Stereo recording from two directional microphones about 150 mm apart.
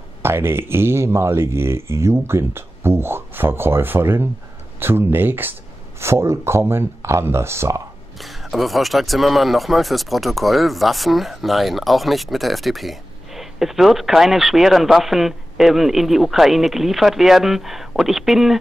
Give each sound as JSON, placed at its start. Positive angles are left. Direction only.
{"t": 0.2, "sound": "speech", "side_deg": -15}
{"t": 8.2, "sound": "speech", "side_deg": 0}